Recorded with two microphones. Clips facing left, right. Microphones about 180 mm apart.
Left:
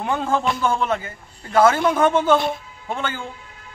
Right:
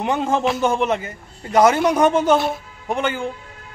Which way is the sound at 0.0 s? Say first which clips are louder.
Right 2 dB; 20° right (ahead or behind).